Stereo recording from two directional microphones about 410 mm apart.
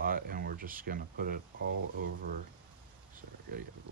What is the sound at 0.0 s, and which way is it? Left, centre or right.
Speech, right.